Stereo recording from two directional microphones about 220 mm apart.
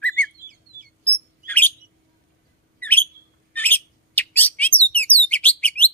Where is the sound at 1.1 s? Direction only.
5° left (ahead or behind).